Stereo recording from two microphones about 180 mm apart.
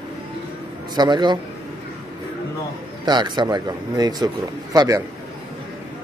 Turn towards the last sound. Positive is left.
turn(degrees=-20)  # may be behind; listen again after turning